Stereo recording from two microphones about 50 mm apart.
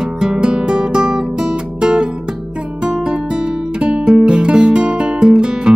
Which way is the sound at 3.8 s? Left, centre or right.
Right.